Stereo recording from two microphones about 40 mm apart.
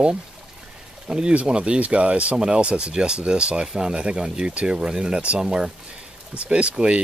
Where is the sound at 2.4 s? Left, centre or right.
Right.